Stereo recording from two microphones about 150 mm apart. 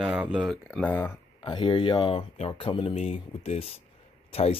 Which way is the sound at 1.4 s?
30° left (ahead or behind).